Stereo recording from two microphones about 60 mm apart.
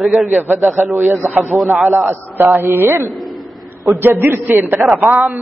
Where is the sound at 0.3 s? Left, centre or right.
Right.